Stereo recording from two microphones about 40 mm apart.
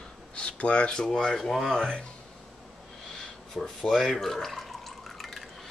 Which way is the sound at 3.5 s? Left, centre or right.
Centre.